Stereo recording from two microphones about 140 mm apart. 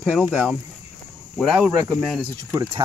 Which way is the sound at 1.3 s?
5° right (ahead or behind).